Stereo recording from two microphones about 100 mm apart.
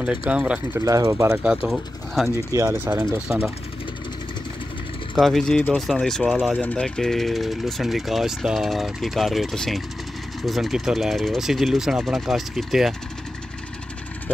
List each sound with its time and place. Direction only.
0.0 s speech: 10° right (ahead or behind)
0.7 s speech: 35° right (ahead or behind)
1.4 s speech: 10° right (ahead or behind)
2.5 s speech: 30° right (ahead or behind)
3.3 s speech: 15° right (ahead or behind)
5.1 s speech: 5° left (ahead or behind)
6.6 s speech: 10° left (ahead or behind)